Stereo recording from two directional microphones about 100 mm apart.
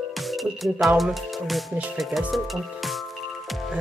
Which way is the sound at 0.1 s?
Centre (ahead or behind).